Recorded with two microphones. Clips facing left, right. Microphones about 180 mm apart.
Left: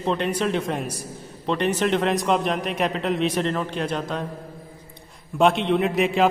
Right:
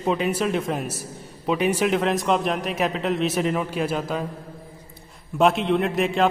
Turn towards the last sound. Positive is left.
turn(degrees=0)  # may be behind; listen again after turning